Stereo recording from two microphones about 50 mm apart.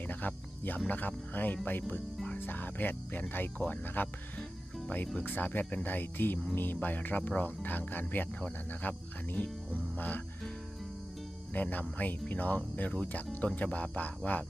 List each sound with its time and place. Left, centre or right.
0.0 s speech: left
5.2 s speech: left
11.5 s speech: left